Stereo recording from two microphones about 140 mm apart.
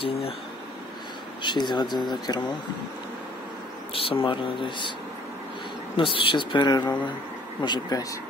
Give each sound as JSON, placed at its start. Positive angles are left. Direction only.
{"t": 1.4, "sound": "speech", "side_deg": 30}
{"t": 3.9, "sound": "speech", "side_deg": 40}
{"t": 5.9, "sound": "speech", "side_deg": 40}